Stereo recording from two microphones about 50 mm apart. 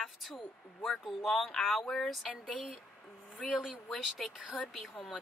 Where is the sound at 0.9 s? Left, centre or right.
Centre.